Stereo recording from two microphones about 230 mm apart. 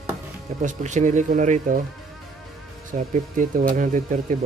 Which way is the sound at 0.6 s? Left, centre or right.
Right.